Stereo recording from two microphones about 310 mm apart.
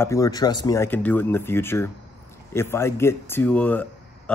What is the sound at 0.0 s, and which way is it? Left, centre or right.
Speech, centre.